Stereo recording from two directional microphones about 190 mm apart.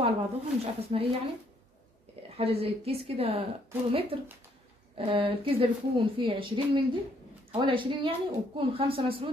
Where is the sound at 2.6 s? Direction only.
30° right (ahead or behind).